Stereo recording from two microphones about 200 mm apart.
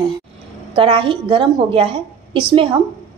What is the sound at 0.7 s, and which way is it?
Speech, 25° right (ahead or behind).